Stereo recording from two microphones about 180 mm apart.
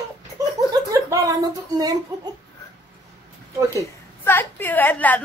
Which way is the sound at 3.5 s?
15° right (ahead or behind).